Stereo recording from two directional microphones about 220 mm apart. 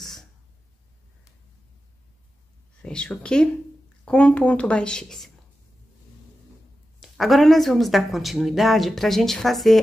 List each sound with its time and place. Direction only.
0.0 s throat clearing: centre (ahead or behind)
2.8 s speech: 5° left (ahead or behind)
7.0 s speech: centre (ahead or behind)